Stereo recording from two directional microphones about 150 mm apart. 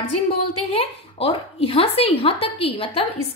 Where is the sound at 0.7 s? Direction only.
40° left (ahead or behind).